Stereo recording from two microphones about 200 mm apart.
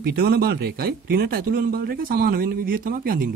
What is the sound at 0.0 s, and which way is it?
Speech, 50° right (ahead or behind).